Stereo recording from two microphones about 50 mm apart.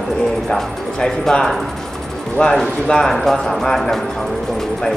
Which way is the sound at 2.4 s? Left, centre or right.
Left.